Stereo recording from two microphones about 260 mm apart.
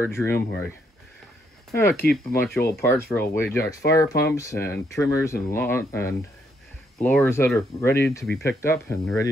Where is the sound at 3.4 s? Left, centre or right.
Centre.